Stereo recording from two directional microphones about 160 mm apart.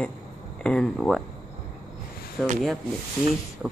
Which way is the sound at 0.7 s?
5° left (ahead or behind).